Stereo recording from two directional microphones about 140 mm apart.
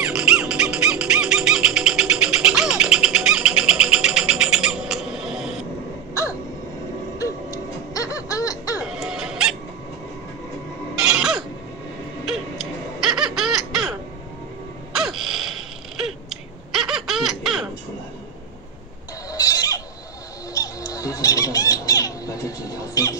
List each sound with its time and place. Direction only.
0.0 s music: 5° right (ahead or behind)
7.2 s music: 25° left (ahead or behind)
8.8 s music: 5° right (ahead or behind)
11.1 s chicken: 5° right (ahead or behind)
12.3 s laughter: centre (ahead or behind)
15.0 s a sound: centre (ahead or behind)
19.3 s neigh: 25° left (ahead or behind)
20.5 s a sound: 25° left (ahead or behind)